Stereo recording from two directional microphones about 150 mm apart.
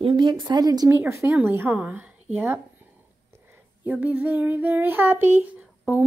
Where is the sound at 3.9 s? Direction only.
10° right (ahead or behind).